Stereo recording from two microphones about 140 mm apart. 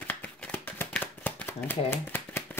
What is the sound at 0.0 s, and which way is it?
Shuffling cards, 10° left (ahead or behind).